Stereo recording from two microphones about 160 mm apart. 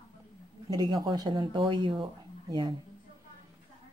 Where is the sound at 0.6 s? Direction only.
25° right (ahead or behind).